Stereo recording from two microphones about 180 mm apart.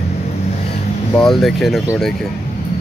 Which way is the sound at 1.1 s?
Centre (ahead or behind).